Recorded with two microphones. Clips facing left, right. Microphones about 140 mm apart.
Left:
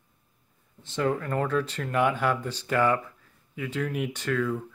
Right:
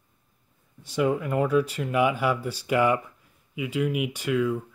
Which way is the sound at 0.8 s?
10° right (ahead or behind).